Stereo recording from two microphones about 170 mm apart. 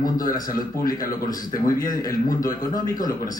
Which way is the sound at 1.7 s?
20° left (ahead or behind).